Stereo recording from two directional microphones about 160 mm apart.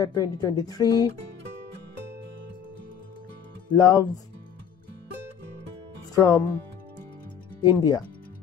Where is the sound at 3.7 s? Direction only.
25° left (ahead or behind).